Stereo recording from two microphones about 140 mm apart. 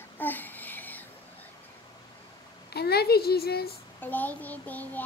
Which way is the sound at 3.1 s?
90° left.